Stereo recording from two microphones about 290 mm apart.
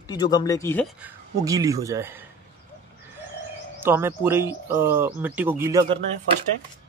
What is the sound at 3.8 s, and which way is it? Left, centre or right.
Speech, centre.